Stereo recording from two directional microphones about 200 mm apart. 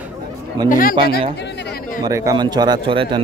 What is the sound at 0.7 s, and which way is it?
Speech, 45° left (ahead or behind).